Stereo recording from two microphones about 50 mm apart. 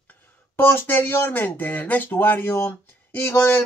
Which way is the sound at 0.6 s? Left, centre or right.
Left.